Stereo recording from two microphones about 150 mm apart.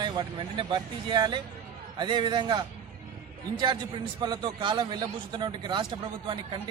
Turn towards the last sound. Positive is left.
turn(degrees=-30)  # may be behind; listen again after turning